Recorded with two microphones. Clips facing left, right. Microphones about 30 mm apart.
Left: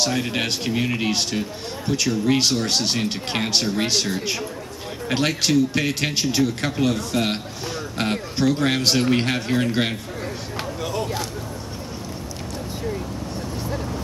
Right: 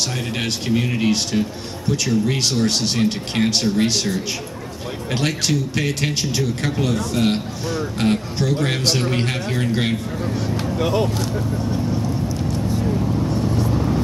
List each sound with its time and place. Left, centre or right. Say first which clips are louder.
0.0 s a man's voice: left 1 dB; centre
10.8 s speech: right 8 dB; right